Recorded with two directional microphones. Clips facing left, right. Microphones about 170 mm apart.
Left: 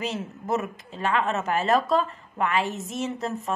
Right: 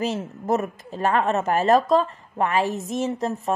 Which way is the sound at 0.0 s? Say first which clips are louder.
Right 5 dB; 40° right (ahead or behind).